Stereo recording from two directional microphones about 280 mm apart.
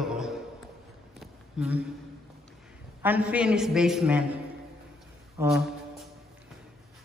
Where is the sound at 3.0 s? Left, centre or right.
Centre.